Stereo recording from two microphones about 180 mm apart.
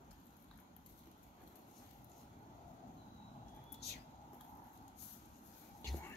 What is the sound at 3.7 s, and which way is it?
Whispering, 65° left (ahead or behind).